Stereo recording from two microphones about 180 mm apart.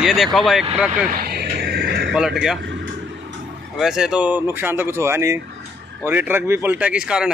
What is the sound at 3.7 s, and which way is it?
Speech, 5° right (ahead or behind).